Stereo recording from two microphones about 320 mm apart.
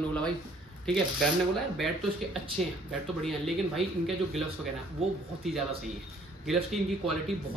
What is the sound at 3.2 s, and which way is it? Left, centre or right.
Speech, centre.